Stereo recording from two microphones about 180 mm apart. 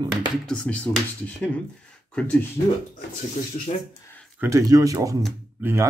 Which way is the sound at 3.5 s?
45° left (ahead or behind).